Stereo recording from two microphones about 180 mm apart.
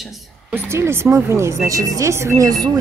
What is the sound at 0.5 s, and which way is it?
Speech, 15° right (ahead or behind).